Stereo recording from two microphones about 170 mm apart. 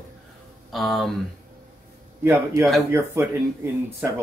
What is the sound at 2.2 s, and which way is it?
Speech, 15° right (ahead or behind).